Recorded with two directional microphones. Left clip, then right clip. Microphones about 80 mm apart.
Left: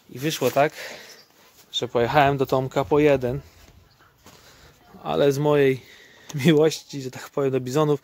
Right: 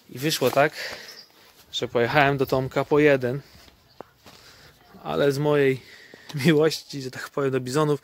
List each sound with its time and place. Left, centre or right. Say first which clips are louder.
0.1 s speech: even; centre
0.7 s speech: right 1 dB; centre
5.0 s speech: left 2 dB; left